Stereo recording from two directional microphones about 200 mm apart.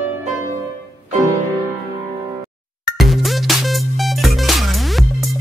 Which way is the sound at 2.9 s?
Centre (ahead or behind).